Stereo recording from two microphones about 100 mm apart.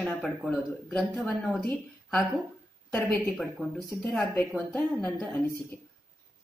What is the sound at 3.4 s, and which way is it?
A woman's voice, 5° left (ahead or behind).